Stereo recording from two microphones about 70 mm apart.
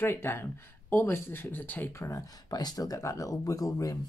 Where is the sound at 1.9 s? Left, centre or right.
Left.